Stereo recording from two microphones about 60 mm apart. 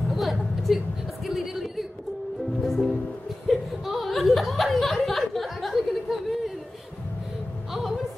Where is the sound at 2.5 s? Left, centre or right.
Centre.